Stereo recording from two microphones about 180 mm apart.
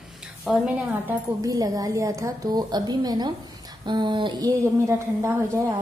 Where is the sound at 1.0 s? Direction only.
20° right (ahead or behind).